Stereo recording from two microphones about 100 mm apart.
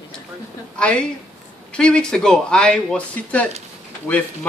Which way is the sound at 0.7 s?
10° left (ahead or behind).